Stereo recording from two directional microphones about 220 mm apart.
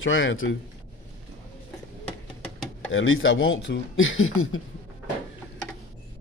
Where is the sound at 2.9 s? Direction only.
60° left (ahead or behind).